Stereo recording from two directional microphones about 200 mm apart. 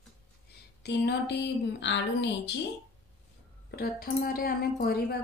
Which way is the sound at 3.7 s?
50° left (ahead or behind).